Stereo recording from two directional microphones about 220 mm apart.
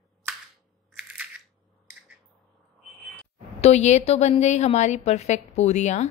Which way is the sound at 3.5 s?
30° left (ahead or behind).